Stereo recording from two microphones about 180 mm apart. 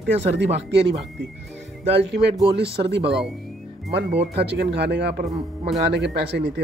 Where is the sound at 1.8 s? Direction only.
70° right (ahead or behind).